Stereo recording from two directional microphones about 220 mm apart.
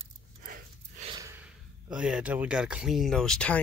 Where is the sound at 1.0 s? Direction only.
25° right (ahead or behind).